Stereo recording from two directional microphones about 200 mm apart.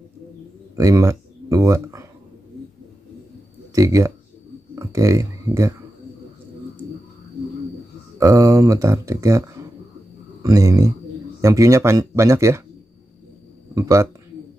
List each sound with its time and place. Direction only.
0.7 s speech: 15° right (ahead or behind)
3.7 s speech: 15° right (ahead or behind)
8.2 s speech: 15° right (ahead or behind)
10.4 s speech: 15° right (ahead or behind)
13.7 s speech: 15° right (ahead or behind)